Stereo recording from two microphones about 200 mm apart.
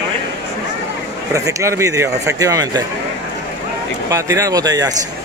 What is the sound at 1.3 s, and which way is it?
Speech, 15° right (ahead or behind).